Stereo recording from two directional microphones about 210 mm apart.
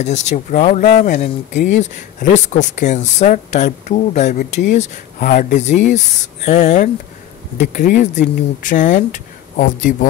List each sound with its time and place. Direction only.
0.0 s speech: 35° left (ahead or behind)